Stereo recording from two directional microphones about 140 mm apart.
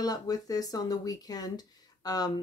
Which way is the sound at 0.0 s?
25° left (ahead or behind).